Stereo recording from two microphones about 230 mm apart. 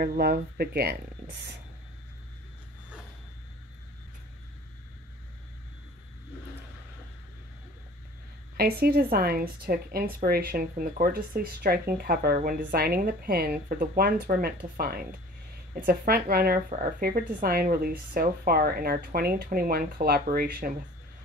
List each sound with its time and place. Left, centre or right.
0.0 s speech: right
8.5 s a woman's voice: right